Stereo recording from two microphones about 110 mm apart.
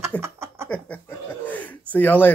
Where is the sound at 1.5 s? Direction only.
15° left (ahead or behind).